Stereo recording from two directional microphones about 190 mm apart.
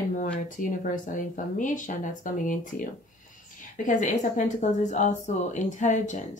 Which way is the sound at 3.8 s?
40° left (ahead or behind).